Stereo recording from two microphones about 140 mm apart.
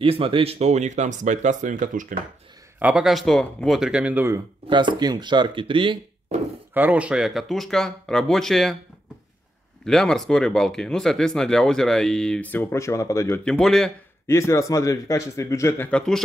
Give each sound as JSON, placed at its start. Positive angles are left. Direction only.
{"t": 0.0, "sound": "speech", "side_deg": -40}
{"t": 2.8, "sound": "speech", "side_deg": -5}
{"t": 4.6, "sound": "speech", "side_deg": -35}
{"t": 6.7, "sound": "speech", "side_deg": -10}
{"t": 9.8, "sound": "speech", "side_deg": 5}
{"t": 13.5, "sound": "speech", "side_deg": 5}
{"t": 14.2, "sound": "a man's voice", "side_deg": 20}